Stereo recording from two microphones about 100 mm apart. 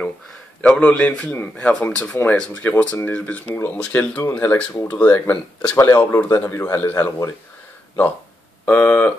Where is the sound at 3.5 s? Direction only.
25° left (ahead or behind).